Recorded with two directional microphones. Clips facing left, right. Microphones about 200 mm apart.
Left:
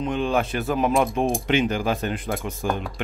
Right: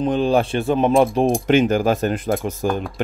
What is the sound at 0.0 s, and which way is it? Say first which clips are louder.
Speech: right 6 dB; 35° right (ahead or behind).